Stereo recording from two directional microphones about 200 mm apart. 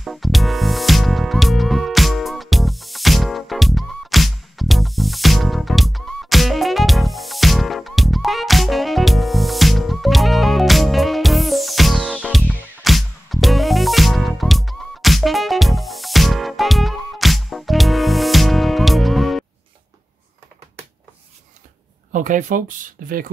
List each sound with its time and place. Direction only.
0.0 s music: centre (ahead or behind)
22.1 s speech: 40° right (ahead or behind)